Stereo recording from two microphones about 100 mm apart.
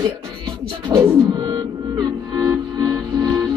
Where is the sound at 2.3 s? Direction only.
25° right (ahead or behind).